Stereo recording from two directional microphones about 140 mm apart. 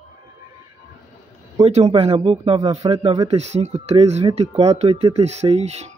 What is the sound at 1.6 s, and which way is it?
Speech, 50° right (ahead or behind).